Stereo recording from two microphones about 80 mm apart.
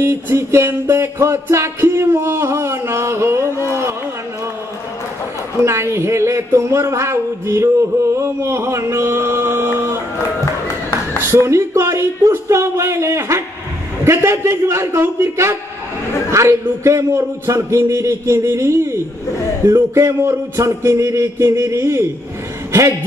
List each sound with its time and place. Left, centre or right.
0.0 s speech: right
3.6 s a sound: right
5.6 s speech: right
11.2 s a man's voice: right